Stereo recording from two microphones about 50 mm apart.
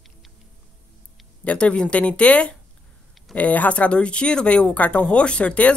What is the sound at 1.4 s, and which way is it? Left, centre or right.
Speech, left.